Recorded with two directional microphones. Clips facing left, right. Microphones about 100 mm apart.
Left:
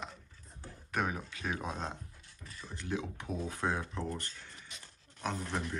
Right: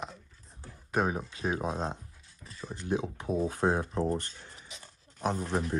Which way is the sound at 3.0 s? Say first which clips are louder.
Right 8 dB; 30° right (ahead or behind).